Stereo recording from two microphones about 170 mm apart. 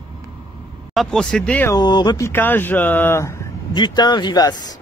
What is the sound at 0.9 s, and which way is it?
Speech, 5° left (ahead or behind).